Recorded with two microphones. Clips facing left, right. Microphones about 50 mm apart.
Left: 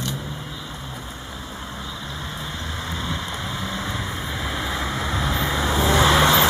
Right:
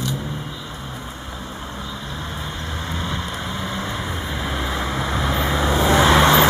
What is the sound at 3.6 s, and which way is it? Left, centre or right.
Vehicle, centre.